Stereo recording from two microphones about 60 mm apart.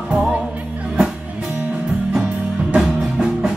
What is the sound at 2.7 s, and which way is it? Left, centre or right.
Music, centre.